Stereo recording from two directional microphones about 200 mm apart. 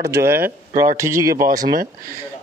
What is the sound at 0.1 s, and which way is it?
Speech, 10° right (ahead or behind).